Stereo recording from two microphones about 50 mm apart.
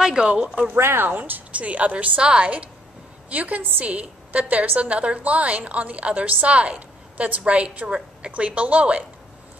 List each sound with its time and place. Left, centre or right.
0.0 s a woman's voice: centre
0.7 s speech: right
1.0 s a woman's voice: right